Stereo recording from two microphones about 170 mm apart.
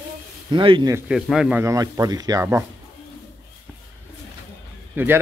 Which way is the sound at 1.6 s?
20° right (ahead or behind).